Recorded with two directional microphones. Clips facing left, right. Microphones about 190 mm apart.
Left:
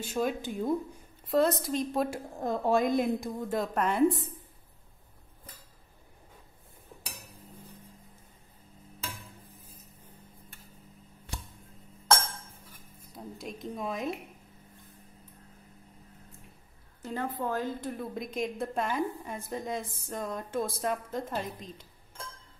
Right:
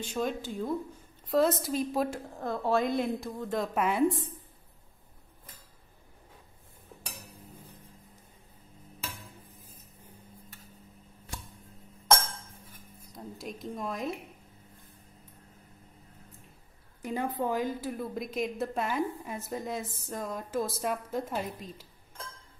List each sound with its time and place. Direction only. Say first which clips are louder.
0.0 s speech: left 1 dB; 5° left (ahead or behind)
0.4 s speech: left 3 dB; 15° left (ahead or behind)
1.2 s a woman's voice: even; centre (ahead or behind)
2.0 s speech: left 2 dB; 10° left (ahead or behind)
3.5 s a woman's voice: even; centre (ahead or behind)
13.1 s a sound: even; centre (ahead or behind)
17.0 s a woman's voice: right 2 dB; 15° right (ahead or behind)